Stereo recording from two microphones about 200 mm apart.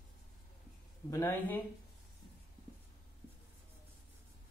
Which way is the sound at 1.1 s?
10° left (ahead or behind).